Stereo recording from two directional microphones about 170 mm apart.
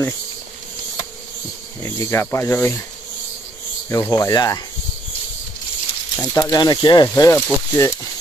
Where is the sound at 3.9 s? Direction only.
20° left (ahead or behind).